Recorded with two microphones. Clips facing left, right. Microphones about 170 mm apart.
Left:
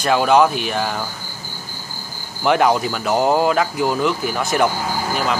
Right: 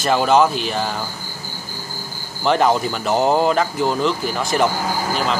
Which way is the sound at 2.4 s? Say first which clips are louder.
Left 1 dB; 5° left (ahead or behind).